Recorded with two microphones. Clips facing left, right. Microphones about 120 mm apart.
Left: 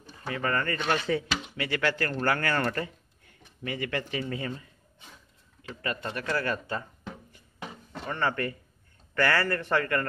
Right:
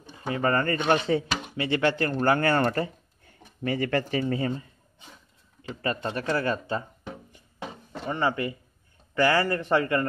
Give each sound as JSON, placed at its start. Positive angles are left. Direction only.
{"t": 0.3, "sound": "speech", "side_deg": -30}
{"t": 3.6, "sound": "speech", "side_deg": -40}
{"t": 5.6, "sound": "a sound", "side_deg": -30}
{"t": 8.1, "sound": "speech", "side_deg": -15}